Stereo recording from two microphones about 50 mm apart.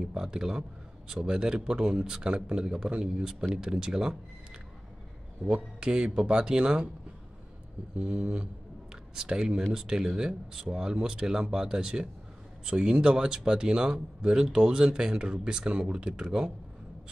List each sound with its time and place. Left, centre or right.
0.0 s speech: centre
5.5 s speech: centre
8.0 s speech: right